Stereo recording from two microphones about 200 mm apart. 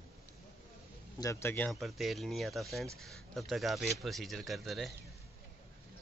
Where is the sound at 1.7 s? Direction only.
Centre (ahead or behind).